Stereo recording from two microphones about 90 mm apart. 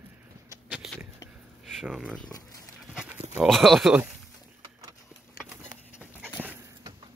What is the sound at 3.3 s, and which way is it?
Speech, centre (ahead or behind).